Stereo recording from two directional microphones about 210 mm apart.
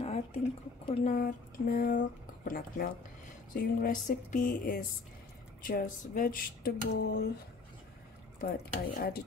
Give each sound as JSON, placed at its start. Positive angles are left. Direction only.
{"t": 0.0, "sound": "a sound", "side_deg": 30}
{"t": 0.8, "sound": "speech", "side_deg": 25}
{"t": 1.1, "sound": "speech", "side_deg": 45}
{"t": 8.4, "sound": "speech", "side_deg": 40}